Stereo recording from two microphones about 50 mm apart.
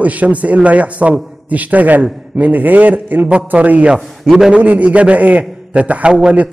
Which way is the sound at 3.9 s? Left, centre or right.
Centre.